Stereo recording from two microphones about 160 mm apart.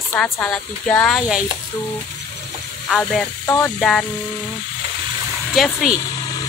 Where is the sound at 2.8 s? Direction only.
Centre (ahead or behind).